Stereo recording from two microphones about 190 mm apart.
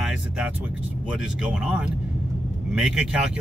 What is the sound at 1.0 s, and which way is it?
Speech, 5° right (ahead or behind).